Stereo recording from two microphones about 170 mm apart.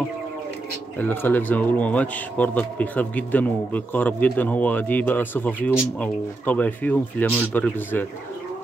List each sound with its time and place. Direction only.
0.9 s speech: 10° left (ahead or behind)